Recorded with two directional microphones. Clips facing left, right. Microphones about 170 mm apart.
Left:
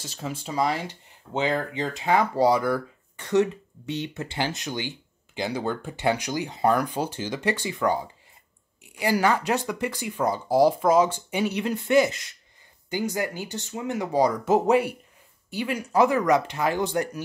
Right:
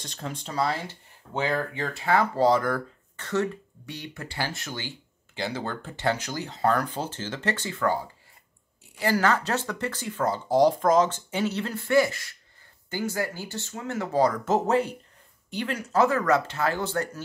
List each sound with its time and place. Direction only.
0.0 s speech: 5° left (ahead or behind)